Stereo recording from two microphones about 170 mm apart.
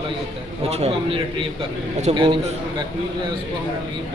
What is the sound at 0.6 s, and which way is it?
A man's voice, 35° right (ahead or behind).